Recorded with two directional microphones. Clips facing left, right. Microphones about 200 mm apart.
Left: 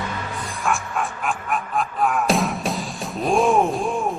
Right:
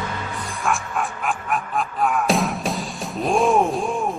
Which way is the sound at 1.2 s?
Centre (ahead or behind).